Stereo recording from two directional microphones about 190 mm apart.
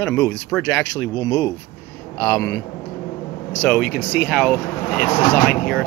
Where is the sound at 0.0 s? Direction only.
10° left (ahead or behind).